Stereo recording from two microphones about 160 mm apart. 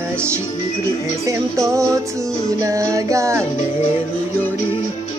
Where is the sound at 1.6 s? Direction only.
20° right (ahead or behind).